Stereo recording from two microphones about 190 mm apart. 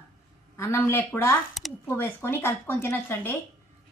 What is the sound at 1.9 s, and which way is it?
Speech, 10° left (ahead or behind).